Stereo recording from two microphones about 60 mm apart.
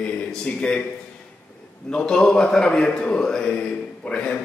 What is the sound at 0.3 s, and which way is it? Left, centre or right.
Speech, centre.